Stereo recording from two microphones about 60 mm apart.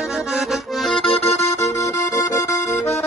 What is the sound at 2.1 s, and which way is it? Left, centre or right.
Accordion, left.